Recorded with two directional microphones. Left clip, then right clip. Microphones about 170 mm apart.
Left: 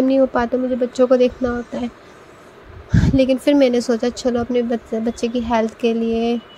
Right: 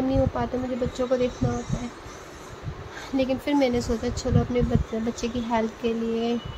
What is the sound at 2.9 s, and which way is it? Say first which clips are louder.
Speech: left 10 dB; 40° left (ahead or behind).